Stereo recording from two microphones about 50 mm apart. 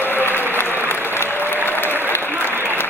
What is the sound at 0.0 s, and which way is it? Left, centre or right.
Applause, left.